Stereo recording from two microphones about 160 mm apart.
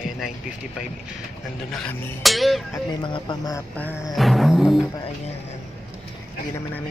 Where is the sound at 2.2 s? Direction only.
Centre (ahead or behind).